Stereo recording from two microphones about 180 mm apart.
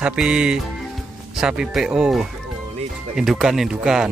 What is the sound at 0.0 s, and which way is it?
Speech, 5° right (ahead or behind).